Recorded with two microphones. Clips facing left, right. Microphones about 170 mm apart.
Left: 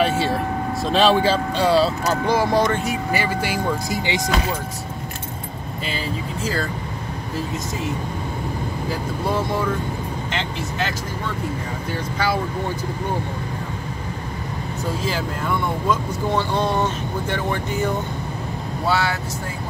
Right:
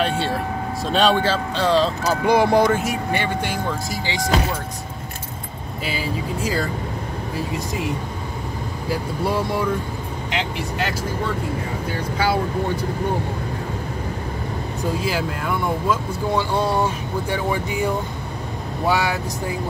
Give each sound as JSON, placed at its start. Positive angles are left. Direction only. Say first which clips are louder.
{"t": 0.0, "sound": "speech", "louder": "left 2 dB", "side_deg": 5}
{"t": 2.2, "sound": "speech", "louder": "right 4 dB", "side_deg": -15}
{"t": 3.9, "sound": "speech", "louder": "left 2 dB", "side_deg": 20}
{"t": 5.9, "sound": "speech", "louder": "right 2 dB", "side_deg": -10}
{"t": 15.0, "sound": "speech", "louder": "right 1 dB", "side_deg": -10}